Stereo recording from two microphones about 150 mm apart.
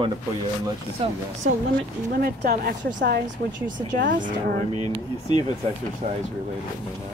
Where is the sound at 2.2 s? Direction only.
80° right; by 4.5 s 65° right (ahead or behind).